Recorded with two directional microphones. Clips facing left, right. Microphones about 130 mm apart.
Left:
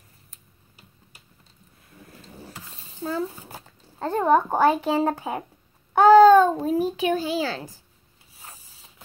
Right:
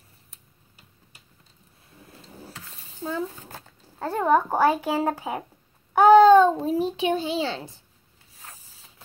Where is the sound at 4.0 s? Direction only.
20° left (ahead or behind).